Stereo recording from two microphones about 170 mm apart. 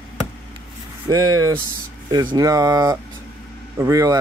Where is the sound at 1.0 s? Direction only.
20° right (ahead or behind).